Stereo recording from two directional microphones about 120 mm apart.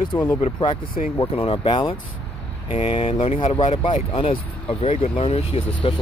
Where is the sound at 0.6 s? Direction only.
45° left (ahead or behind).